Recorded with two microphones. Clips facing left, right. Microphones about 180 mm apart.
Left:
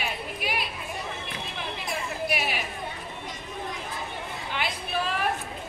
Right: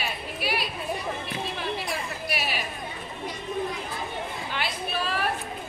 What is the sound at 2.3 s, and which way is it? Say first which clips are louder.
Chatter: right 1 dB; 15° left (ahead or behind).